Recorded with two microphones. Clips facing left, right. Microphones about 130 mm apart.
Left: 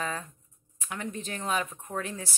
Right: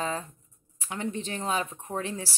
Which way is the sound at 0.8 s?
30° right (ahead or behind).